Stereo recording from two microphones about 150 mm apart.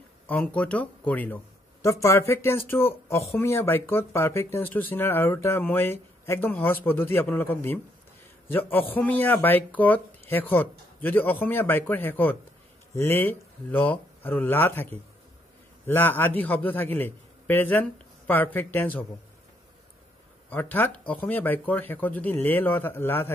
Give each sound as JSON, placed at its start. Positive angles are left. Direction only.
{"t": 0.3, "sound": "speech", "side_deg": 10}
{"t": 15.9, "sound": "speech", "side_deg": 15}
{"t": 20.4, "sound": "speech", "side_deg": 10}